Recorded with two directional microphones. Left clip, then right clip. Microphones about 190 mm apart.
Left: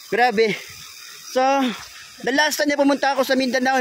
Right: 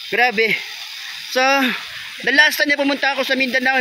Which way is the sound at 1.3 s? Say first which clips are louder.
Right 3 dB; 15° left (ahead or behind).